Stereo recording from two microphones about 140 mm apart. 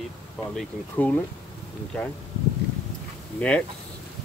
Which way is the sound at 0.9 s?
15° left (ahead or behind).